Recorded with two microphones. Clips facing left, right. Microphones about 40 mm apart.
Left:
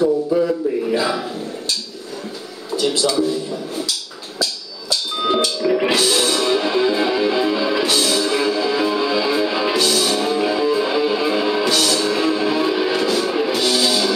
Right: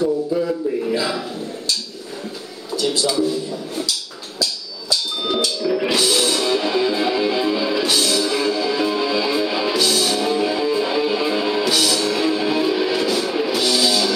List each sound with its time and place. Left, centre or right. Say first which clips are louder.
0.3 s speech: left 4 dB; centre
0.9 s a sound: left 2 dB; centre
4.4 s music: left 1 dB; left
5.9 s music: left 1 dB; centre
11.7 s music: left 1 dB; centre